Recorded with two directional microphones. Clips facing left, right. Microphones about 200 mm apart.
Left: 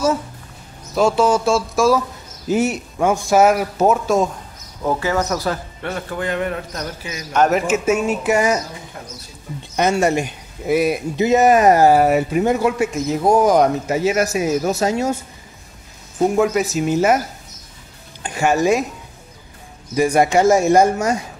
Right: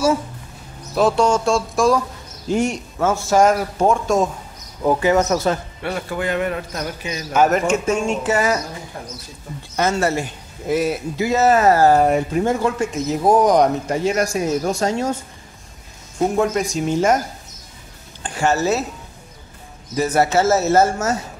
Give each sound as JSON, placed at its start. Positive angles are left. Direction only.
{"t": 0.9, "sound": "a man's voice", "side_deg": 0}
{"t": 4.8, "sound": "speech", "side_deg": -15}
{"t": 5.8, "sound": "a man's voice", "side_deg": -10}
{"t": 9.8, "sound": "a man's voice", "side_deg": 15}
{"t": 16.3, "sound": "speech", "side_deg": 5}
{"t": 18.2, "sound": "speech", "side_deg": 10}
{"t": 20.0, "sound": "a man's voice", "side_deg": 10}